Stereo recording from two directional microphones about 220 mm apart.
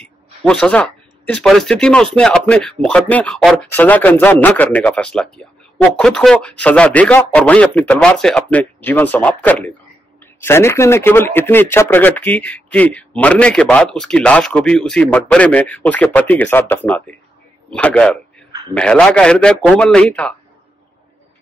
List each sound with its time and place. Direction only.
0.0 s a man's voice: 5° left (ahead or behind)
10.4 s a man's voice: 10° left (ahead or behind)